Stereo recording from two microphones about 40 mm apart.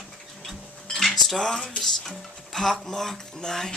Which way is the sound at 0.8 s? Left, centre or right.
Centre.